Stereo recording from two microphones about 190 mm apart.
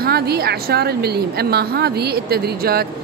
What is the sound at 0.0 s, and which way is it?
A woman's voice, 55° right (ahead or behind).